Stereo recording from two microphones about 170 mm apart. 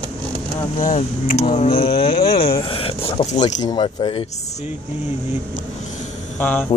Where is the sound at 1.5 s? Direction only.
35° left (ahead or behind).